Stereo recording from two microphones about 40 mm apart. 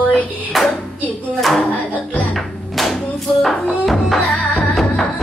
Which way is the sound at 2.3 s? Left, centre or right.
Centre.